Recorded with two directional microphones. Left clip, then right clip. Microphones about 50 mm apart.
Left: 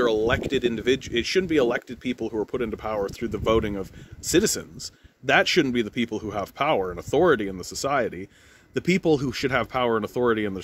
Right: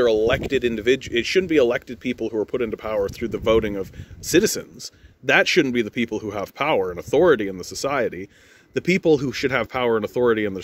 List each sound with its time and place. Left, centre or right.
0.0 s speech: left
3.1 s speech: left
8.7 s speech: left
9.5 s speech: left